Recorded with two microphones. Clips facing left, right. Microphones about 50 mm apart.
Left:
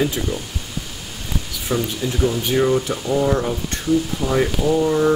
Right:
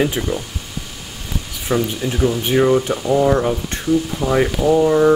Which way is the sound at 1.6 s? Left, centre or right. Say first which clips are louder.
Right 3 dB; centre.